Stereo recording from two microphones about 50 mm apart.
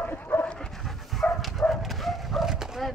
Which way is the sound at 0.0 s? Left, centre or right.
Left.